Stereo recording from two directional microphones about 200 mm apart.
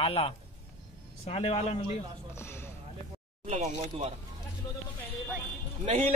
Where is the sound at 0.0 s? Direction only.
30° left (ahead or behind).